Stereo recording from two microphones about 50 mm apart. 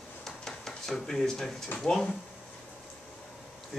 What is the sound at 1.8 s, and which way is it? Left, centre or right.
Speech, centre.